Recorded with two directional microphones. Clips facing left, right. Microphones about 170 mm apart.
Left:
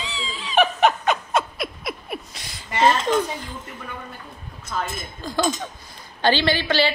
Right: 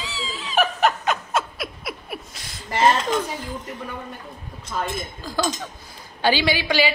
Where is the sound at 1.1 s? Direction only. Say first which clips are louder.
Left 2 dB; centre (ahead or behind).